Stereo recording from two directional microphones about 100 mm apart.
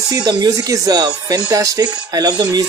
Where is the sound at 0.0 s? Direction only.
40° right (ahead or behind).